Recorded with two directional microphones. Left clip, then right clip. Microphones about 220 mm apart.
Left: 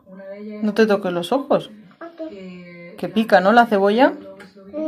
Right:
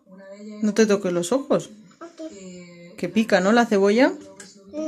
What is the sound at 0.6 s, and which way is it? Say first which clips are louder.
A woman's voice: left 2 dB; 40° right (ahead or behind).